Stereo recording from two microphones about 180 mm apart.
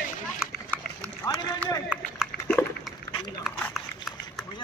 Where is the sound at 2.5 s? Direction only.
5° left (ahead or behind).